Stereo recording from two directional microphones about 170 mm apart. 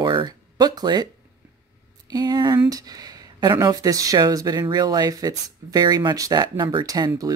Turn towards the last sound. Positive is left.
turn(degrees=-20)  # may be behind; listen again after turning